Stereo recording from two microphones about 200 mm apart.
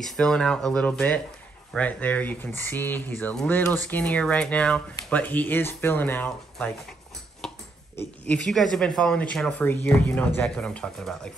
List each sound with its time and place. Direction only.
0.0 s speech: centre (ahead or behind)
7.4 s a sound: 10° left (ahead or behind)
8.7 s speech: 5° left (ahead or behind)